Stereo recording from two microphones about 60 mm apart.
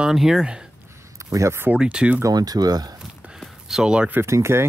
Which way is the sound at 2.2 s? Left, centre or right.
Right.